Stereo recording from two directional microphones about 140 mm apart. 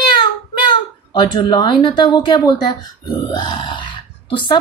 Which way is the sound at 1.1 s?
35° left (ahead or behind).